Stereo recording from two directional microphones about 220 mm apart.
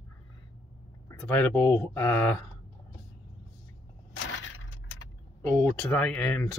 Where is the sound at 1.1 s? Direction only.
10° left (ahead or behind).